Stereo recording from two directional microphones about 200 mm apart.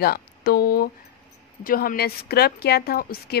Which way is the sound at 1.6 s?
45° left (ahead or behind).